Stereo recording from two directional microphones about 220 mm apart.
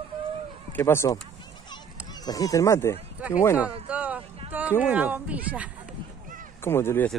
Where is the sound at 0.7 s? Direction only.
10° left (ahead or behind).